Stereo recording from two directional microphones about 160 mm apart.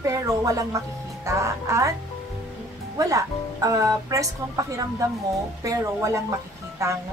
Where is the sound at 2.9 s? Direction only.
20° right (ahead or behind).